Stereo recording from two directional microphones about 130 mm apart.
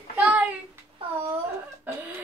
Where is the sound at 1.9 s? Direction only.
15° right (ahead or behind).